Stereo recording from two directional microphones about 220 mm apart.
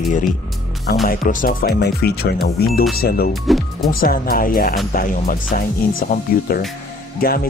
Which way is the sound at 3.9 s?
40° left (ahead or behind).